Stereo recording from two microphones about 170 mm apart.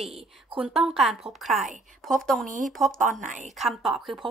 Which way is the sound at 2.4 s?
50° right (ahead or behind).